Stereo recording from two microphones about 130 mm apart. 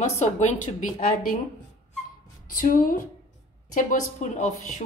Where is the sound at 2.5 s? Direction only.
90° left.